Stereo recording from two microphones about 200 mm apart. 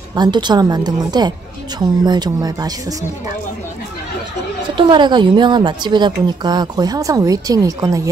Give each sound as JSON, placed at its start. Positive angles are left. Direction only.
{"t": 0.1, "sound": "a woman's voice", "side_deg": -20}
{"t": 4.7, "sound": "a woman's voice", "side_deg": -25}